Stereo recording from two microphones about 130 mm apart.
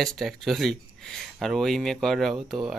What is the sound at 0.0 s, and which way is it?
Speech, centre (ahead or behind).